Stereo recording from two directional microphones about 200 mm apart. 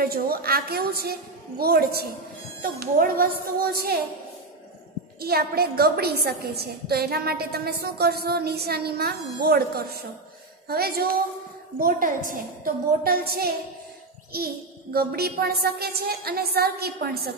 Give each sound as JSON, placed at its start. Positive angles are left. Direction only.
{"t": 0.0, "sound": "a woman's voice", "side_deg": -50}
{"t": 5.2, "sound": "a woman's voice", "side_deg": -50}